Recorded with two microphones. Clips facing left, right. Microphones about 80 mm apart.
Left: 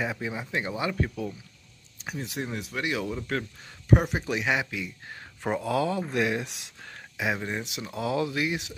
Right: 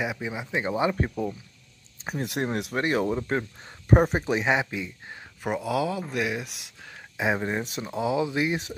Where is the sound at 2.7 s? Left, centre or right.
Right.